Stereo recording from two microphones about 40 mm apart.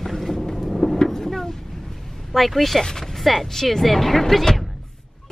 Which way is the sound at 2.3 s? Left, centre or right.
Centre.